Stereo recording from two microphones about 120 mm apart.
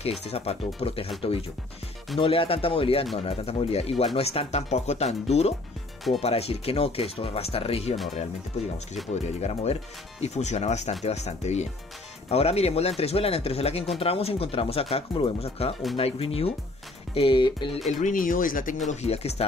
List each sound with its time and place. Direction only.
0.3 s speech: 55° left (ahead or behind)
2.1 s speech: 50° left (ahead or behind)
9.4 s speech: 60° left (ahead or behind); by 17.6 s 40° left (ahead or behind)
17.8 s speech: 90° left
18.9 s speech: 65° left (ahead or behind)